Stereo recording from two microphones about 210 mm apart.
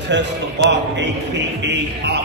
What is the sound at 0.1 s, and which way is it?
A man's voice, 55° right (ahead or behind).